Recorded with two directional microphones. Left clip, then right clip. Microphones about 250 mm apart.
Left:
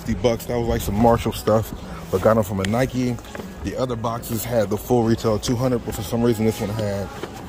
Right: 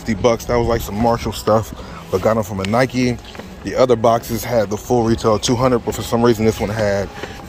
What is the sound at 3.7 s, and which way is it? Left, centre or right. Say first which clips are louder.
Speech: right 12 dB; right.